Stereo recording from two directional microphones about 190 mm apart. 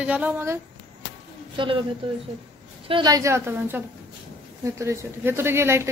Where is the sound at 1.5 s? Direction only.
25° right (ahead or behind).